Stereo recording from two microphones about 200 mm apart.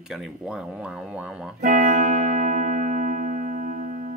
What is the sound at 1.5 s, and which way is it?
Music, 45° right (ahead or behind).